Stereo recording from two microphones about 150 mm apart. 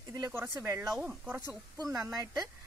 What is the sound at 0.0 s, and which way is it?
A woman's voice, 20° right (ahead or behind).